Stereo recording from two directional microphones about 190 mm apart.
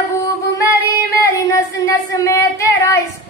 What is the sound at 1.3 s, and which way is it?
Child singing, 15° left (ahead or behind).